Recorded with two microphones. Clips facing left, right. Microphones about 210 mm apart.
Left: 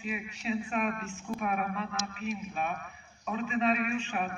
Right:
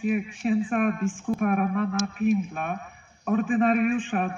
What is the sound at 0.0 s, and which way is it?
A man's voice, 50° right (ahead or behind).